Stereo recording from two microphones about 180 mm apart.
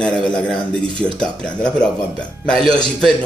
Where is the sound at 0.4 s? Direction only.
5° left (ahead or behind).